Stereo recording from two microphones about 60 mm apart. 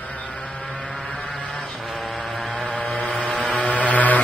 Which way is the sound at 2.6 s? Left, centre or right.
Centre.